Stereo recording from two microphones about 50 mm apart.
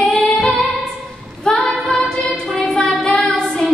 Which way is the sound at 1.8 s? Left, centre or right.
Centre.